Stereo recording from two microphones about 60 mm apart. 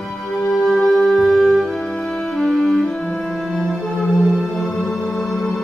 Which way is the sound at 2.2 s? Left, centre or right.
Centre.